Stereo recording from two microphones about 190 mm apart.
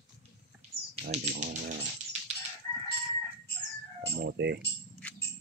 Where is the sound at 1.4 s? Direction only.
40° right (ahead or behind).